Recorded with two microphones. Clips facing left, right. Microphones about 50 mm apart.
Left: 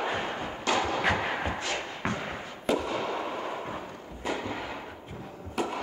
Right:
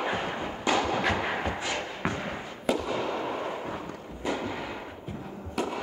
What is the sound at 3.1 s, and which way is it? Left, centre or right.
Artillery fire, centre.